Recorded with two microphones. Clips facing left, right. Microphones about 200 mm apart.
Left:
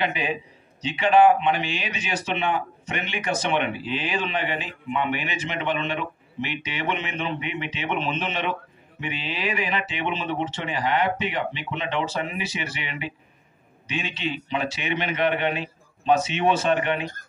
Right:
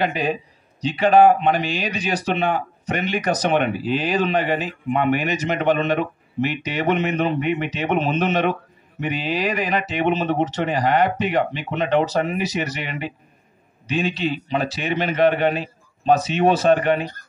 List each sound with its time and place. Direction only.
0.0 s a man's voice: 40° right (ahead or behind)